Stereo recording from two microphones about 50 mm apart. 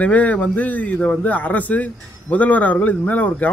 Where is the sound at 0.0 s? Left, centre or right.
Left.